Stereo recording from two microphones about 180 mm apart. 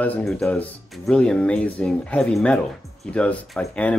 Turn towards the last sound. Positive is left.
turn(degrees=5)  # may be behind; listen again after turning